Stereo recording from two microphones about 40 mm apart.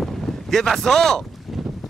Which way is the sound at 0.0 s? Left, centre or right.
Centre.